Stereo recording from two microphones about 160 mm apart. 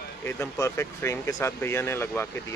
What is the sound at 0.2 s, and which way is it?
Speech, 15° left (ahead or behind).